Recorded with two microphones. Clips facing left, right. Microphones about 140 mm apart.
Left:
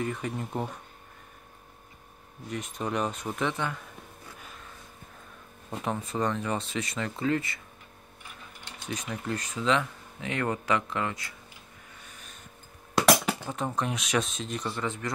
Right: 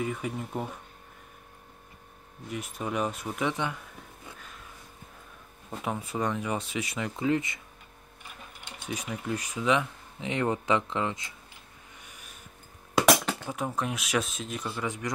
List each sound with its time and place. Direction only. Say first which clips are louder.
0.0 s speech: even; 5° right (ahead or behind)
2.5 s speech: left 1 dB; 5° right (ahead or behind)
5.9 s speech: left 1 dB; 10° right (ahead or behind)
8.8 s speech: even; 10° right (ahead or behind)
12.0 s vehicle: even; 10° right (ahead or behind)
12.9 s a sound: even; centre (ahead or behind)
13.5 s speech: right 1 dB; 5° right (ahead or behind)